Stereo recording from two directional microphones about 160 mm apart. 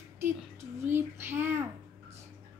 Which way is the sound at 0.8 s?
15° right (ahead or behind).